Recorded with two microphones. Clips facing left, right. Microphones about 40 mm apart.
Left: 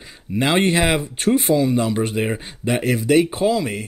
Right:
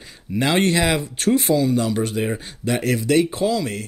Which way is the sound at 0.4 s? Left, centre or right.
Centre.